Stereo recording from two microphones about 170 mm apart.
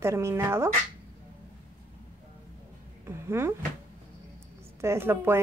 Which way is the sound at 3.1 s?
15° right (ahead or behind).